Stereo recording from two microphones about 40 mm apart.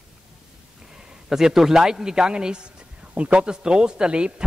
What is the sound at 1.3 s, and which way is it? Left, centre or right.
A man's voice, centre.